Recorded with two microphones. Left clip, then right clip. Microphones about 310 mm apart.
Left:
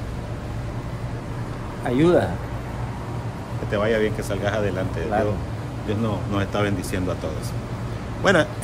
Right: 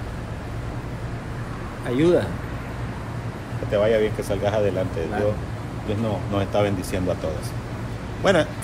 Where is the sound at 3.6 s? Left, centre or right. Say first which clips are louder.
Right 2 dB; centre.